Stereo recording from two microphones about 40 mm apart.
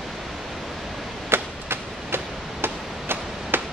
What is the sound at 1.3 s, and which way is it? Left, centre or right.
Tick-tock, right.